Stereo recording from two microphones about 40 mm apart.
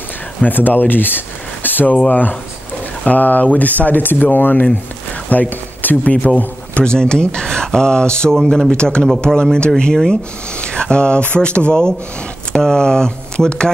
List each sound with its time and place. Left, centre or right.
0.4 s speech: left
6.8 s speech: centre